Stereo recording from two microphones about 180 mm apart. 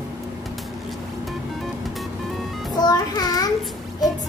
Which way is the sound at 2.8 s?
20° left (ahead or behind).